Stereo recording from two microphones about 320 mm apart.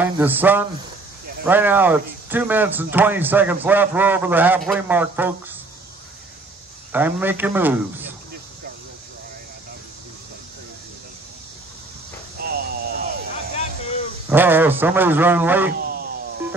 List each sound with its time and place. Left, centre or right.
0.0 s speech: centre
6.9 s speech: centre
12.4 s vehicle: right
14.3 s speech: centre